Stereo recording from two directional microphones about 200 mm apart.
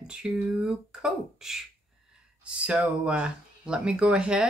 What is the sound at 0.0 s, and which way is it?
Speech, 5° right (ahead or behind).